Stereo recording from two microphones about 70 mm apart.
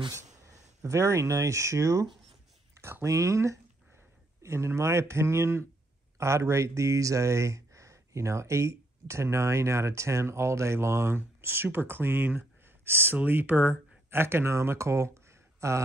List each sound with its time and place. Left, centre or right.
0.1 s speech: right